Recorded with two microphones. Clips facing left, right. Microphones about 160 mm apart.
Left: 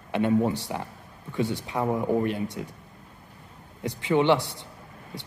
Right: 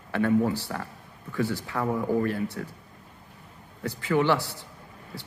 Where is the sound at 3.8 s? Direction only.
20° left (ahead or behind).